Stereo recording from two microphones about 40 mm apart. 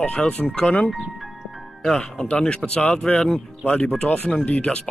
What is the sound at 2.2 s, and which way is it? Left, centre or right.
Speech, left.